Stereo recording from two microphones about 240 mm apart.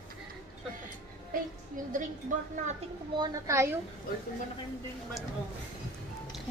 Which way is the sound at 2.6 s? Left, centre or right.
Right.